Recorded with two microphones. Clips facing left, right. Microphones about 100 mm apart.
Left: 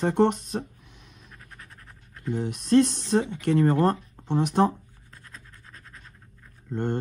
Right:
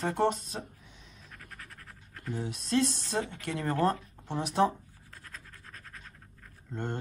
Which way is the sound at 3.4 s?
35° left (ahead or behind).